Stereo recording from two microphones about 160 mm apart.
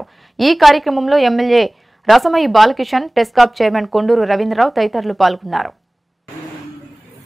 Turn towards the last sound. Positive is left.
turn(degrees=0)  # may be behind; listen again after turning